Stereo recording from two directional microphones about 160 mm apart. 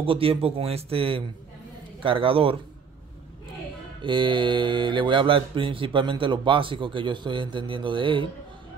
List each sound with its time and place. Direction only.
0.0 s speech: 35° right (ahead or behind)
4.0 s speech: 30° right (ahead or behind)